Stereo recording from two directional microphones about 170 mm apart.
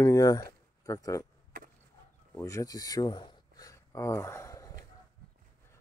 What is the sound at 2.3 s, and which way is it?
Speech, 20° left (ahead or behind).